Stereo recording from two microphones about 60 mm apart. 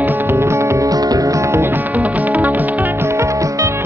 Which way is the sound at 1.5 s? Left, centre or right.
Right.